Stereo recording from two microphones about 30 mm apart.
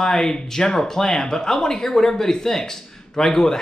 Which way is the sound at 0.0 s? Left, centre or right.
Left.